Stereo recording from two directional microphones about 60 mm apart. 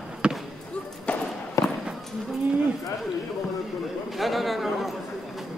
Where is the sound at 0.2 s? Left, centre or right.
Centre.